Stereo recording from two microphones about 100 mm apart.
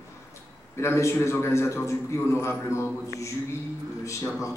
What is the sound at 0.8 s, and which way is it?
A man's voice, 25° left (ahead or behind).